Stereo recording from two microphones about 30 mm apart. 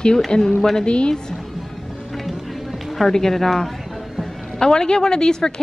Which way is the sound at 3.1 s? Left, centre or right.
Centre.